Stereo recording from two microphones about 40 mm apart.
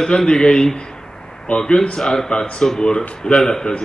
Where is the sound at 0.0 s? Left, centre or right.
Centre.